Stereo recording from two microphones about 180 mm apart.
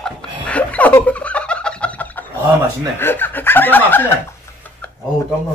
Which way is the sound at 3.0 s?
10° left (ahead or behind).